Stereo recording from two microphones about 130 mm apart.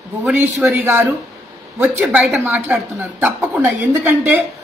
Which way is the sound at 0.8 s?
15° right (ahead or behind).